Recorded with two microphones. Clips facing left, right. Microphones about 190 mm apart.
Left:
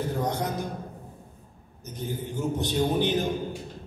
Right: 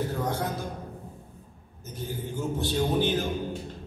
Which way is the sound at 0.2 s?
20° left (ahead or behind).